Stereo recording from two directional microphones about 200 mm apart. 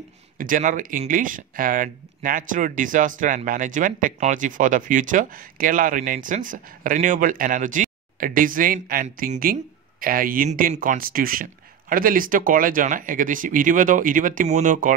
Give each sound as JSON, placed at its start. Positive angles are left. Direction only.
{"t": 0.4, "sound": "speech", "side_deg": -40}